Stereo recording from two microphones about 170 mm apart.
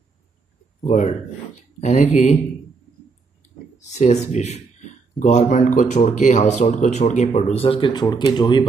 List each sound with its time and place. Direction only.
0.8 s speech: 40° left (ahead or behind)
3.9 s speech: 40° left (ahead or behind)
7.5 s speech: 30° left (ahead or behind)